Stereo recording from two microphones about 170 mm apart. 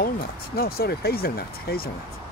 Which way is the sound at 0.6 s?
65° left (ahead or behind).